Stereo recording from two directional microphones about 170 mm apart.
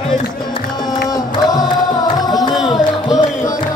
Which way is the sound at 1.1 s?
20° left (ahead or behind).